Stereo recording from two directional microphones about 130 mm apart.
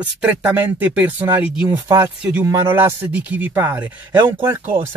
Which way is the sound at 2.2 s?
10° right (ahead or behind).